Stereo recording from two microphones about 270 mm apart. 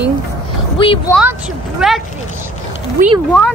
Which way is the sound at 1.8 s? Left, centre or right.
Centre.